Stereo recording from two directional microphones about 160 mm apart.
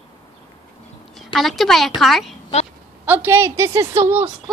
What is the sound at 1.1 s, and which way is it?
A woman's voice, centre (ahead or behind).